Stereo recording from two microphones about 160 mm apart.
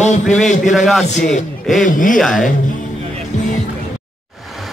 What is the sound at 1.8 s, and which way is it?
Speech, 55° left (ahead or behind).